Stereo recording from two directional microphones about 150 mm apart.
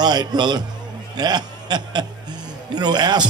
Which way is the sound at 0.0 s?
30° right (ahead or behind).